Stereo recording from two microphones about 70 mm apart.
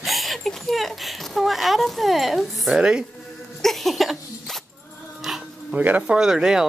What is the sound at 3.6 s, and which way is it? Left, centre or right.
Zipper, centre.